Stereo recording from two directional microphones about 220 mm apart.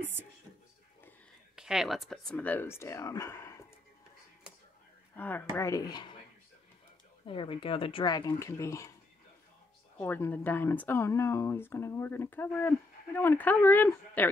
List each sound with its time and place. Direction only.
0.0 s speech: 10° right (ahead or behind)
1.5 s speech: centre (ahead or behind)
5.1 s speech: 10° left (ahead or behind)
7.2 s speech: 25° left (ahead or behind)
9.9 s speech: 10° left (ahead or behind)